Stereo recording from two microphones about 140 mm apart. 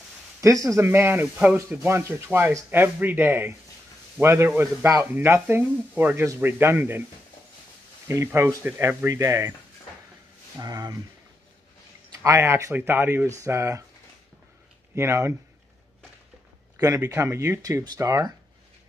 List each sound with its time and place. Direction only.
0.4 s speech: 20° right (ahead or behind)
8.1 s speech: 20° right (ahead or behind)
10.6 s speech: 25° right (ahead or behind)
12.2 s speech: 20° right (ahead or behind)
15.0 s speech: 20° right (ahead or behind)
16.7 s speech: 25° right (ahead or behind)